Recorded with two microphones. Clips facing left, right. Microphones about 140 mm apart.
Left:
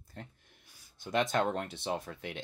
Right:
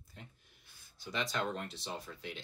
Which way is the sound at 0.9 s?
55° left (ahead or behind).